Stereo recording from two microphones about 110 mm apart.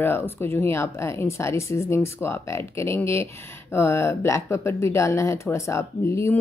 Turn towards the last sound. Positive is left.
turn(degrees=25)  # may be behind; listen again after turning